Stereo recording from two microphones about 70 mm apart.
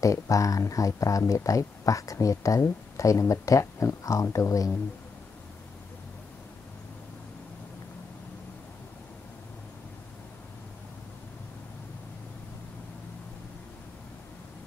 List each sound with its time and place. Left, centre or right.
0.0 s speech: left